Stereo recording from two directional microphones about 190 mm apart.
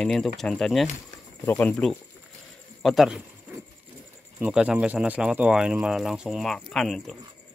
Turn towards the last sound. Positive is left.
turn(degrees=0)  # may be behind; listen again after turning